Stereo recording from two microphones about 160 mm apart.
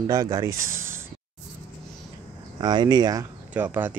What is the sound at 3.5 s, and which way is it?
Speech, 10° right (ahead or behind).